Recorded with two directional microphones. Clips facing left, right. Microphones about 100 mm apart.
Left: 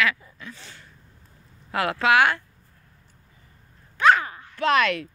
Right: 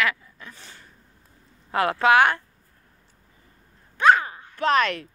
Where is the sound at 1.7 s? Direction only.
30° right (ahead or behind).